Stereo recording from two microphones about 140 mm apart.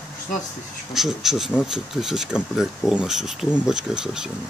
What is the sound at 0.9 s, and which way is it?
Speech, centre (ahead or behind).